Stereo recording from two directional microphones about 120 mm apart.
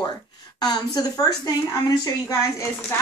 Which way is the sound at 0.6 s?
35° left (ahead or behind).